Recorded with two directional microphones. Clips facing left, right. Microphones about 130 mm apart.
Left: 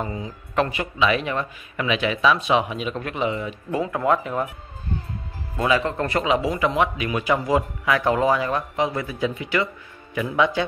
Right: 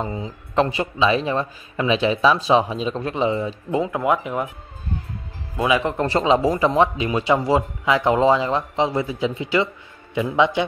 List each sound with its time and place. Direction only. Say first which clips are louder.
0.0 s a man's voice: right 2 dB; 25° right (ahead or behind)
5.6 s speech: right 1 dB; 15° right (ahead or behind)
6.0 s a man's voice: right 7 dB; 30° right (ahead or behind)